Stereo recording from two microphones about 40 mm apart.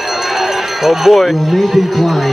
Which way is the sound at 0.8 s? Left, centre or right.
Centre.